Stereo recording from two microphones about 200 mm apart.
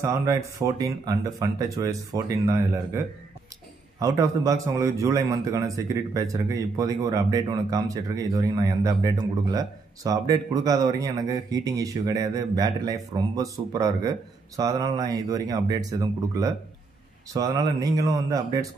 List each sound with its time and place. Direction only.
0.0 s a man's voice: 15° right (ahead or behind)
4.0 s a man's voice: 15° right (ahead or behind)